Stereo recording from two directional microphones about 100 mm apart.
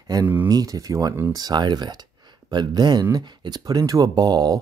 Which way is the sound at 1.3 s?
45° right (ahead or behind).